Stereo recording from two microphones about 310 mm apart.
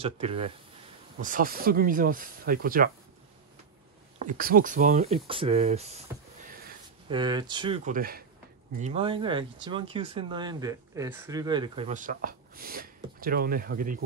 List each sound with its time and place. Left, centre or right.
0.0 s speech: centre
4.2 s speech: right